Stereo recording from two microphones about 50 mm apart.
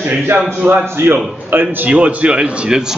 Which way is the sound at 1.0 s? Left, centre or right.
Right.